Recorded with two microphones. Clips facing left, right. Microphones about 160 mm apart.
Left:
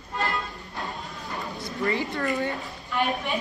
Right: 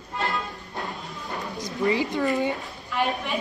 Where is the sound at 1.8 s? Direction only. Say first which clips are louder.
Right 4 dB; 15° right (ahead or behind).